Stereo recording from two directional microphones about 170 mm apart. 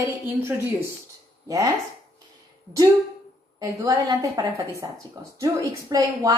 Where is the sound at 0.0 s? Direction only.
15° right (ahead or behind).